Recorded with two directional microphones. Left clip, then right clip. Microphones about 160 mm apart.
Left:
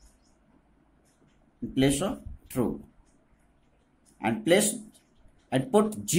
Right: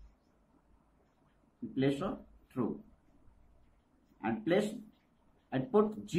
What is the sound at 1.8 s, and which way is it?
Speech, 45° left (ahead or behind).